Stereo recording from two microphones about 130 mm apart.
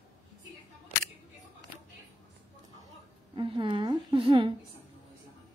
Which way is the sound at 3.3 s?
40° right (ahead or behind).